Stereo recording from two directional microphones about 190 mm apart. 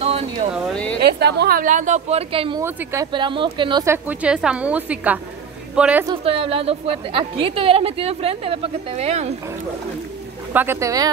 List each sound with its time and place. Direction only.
0.0 s a sound: 35° right (ahead or behind)
0.7 s a sound: 5° left (ahead or behind)
1.0 s a woman's voice: 60° right (ahead or behind); by 2.6 s 30° right (ahead or behind)
2.6 s a woman's voice: 10° right (ahead or behind)
3.1 s speech: 25° right (ahead or behind)
3.8 s a woman's voice: 10° right (ahead or behind)
6.0 s a woman's voice: 30° right (ahead or behind)
10.5 s a woman's voice: 10° right (ahead or behind)